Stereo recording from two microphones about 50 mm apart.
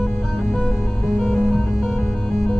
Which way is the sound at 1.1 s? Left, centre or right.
Centre.